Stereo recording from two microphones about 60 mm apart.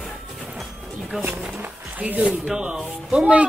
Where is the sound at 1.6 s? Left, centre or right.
Right.